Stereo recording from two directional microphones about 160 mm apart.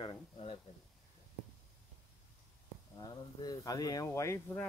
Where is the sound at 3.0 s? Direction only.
25° left (ahead or behind).